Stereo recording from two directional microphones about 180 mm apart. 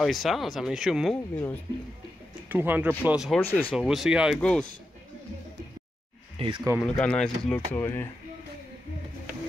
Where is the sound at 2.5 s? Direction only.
10° right (ahead or behind).